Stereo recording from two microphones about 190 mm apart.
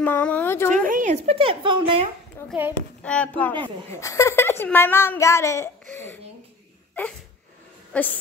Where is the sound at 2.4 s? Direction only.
10° left (ahead or behind).